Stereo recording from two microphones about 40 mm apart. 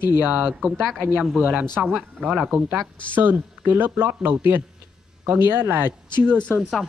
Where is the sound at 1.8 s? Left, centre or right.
Centre.